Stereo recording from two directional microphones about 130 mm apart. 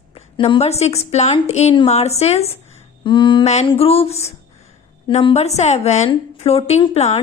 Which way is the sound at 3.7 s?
45° left (ahead or behind).